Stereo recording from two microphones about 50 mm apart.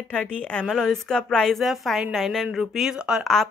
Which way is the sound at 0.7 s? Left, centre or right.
Centre.